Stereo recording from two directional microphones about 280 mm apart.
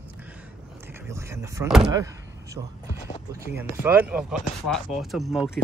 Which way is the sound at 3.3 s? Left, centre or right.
Centre.